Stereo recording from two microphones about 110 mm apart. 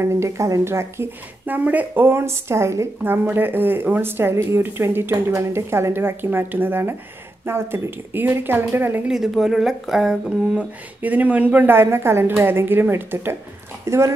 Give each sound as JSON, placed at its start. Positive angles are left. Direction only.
{"t": 0.0, "sound": "speech", "side_deg": -25}
{"t": 9.0, "sound": "speech", "side_deg": -5}